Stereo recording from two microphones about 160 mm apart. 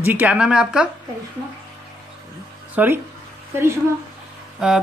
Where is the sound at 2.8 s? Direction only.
10° right (ahead or behind).